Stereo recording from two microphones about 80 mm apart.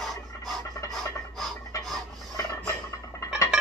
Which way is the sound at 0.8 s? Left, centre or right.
Centre.